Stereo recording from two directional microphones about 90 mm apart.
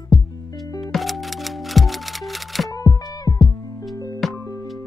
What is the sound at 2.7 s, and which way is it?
Music, 40° left (ahead or behind).